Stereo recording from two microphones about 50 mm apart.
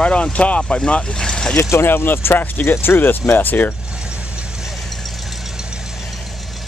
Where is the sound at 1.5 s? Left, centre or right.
Left.